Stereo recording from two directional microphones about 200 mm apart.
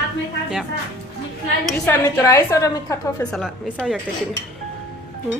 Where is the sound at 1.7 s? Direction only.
10° left (ahead or behind).